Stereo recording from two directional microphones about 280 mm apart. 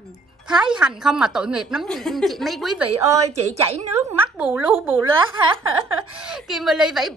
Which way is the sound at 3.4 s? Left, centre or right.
Right.